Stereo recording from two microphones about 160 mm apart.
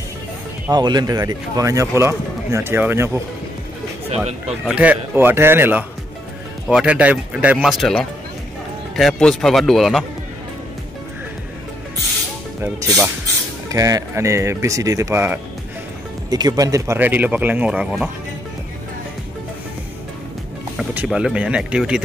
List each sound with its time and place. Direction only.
0.7 s speech: 25° right (ahead or behind)
4.6 s speech: 10° right (ahead or behind)
13.7 s speech: 20° right (ahead or behind)
16.3 s speech: 25° right (ahead or behind); by 18.1 s 5° right (ahead or behind)
20.7 s speech: 5° right (ahead or behind)